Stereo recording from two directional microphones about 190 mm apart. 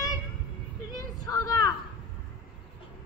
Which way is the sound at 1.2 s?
20° left (ahead or behind).